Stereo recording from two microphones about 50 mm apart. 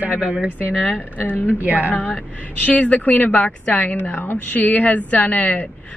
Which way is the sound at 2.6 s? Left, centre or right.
Left.